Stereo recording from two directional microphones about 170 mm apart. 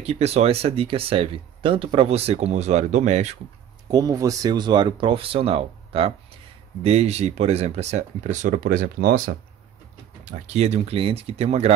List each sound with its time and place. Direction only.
0.0 s speech: 40° right (ahead or behind)
3.9 s speech: 20° right (ahead or behind); by 9.3 s 55° right (ahead or behind)
10.2 s speech: 40° right (ahead or behind)